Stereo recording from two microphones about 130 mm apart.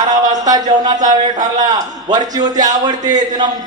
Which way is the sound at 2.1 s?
30° right (ahead or behind).